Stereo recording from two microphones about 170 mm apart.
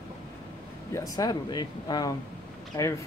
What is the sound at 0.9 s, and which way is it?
Speech, 20° left (ahead or behind).